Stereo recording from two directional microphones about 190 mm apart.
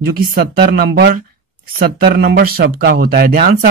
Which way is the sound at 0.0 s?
50° right (ahead or behind).